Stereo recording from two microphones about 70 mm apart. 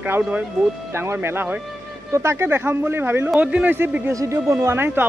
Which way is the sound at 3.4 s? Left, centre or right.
Right.